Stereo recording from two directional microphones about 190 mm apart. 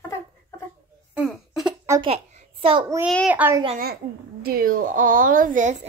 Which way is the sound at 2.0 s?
30° right (ahead or behind).